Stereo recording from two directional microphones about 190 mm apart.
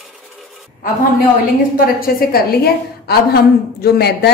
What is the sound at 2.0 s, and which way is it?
A woman's voice, 55° left (ahead or behind).